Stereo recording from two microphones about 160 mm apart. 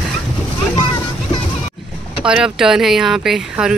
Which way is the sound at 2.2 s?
5° right (ahead or behind).